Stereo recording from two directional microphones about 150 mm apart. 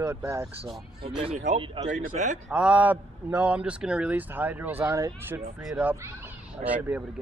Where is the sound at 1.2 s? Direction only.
50° right (ahead or behind).